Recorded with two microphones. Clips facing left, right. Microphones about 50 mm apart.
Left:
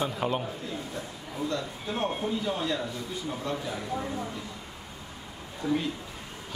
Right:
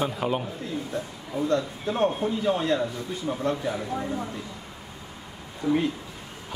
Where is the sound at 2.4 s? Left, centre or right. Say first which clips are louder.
Right 6 dB; right.